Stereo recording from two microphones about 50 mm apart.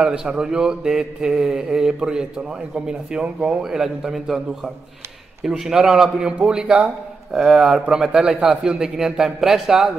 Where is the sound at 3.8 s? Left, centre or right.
Centre.